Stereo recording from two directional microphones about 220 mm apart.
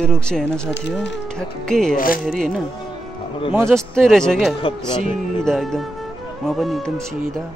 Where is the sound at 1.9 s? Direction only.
40° left (ahead or behind).